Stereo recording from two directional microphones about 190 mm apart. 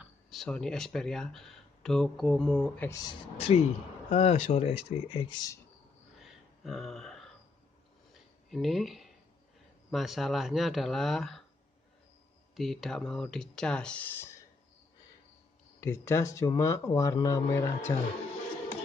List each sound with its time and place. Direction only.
0.0 s speech: centre (ahead or behind)
2.9 s speech: 20° left (ahead or behind)
3.3 s speech: 30° left (ahead or behind)
6.1 s a sound: centre (ahead or behind)
9.8 s speech: centre (ahead or behind)
12.5 s speech: centre (ahead or behind)
15.8 s speech: 15° left (ahead or behind)